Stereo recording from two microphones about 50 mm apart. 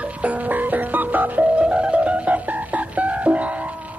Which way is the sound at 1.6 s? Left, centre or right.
Right.